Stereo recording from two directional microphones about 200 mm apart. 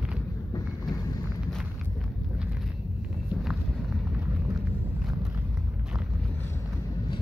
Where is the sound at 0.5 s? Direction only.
20° left (ahead or behind).